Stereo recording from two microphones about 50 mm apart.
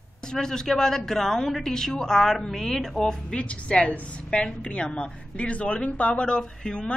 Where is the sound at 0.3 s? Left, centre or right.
Centre.